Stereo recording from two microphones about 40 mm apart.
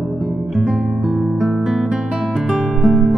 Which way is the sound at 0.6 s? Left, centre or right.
Centre.